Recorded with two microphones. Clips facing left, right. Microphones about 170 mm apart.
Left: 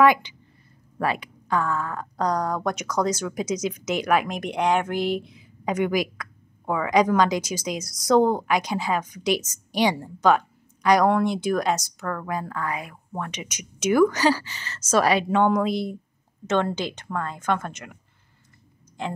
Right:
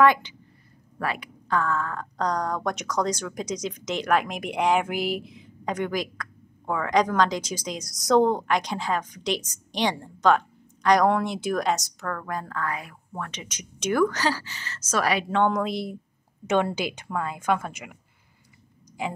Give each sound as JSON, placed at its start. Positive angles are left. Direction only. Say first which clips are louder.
{"t": 0.0, "sound": "a woman's voice", "louder": "left 1 dB", "side_deg": 15}
{"t": 1.5, "sound": "a woman's voice", "louder": "left 1 dB", "side_deg": 10}
{"t": 15.2, "sound": "a woman's voice", "louder": "left 3 dB", "side_deg": 5}
{"t": 16.4, "sound": "a woman's voice", "louder": "even", "side_deg": -10}
{"t": 19.0, "sound": "speech", "louder": "even", "side_deg": -10}